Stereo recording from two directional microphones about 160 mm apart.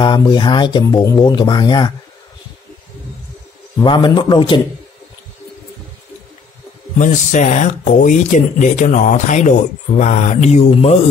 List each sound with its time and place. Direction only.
0.0 s speech: 25° left (ahead or behind)
3.8 s a man's voice: 30° left (ahead or behind)
7.0 s speech: 50° left (ahead or behind)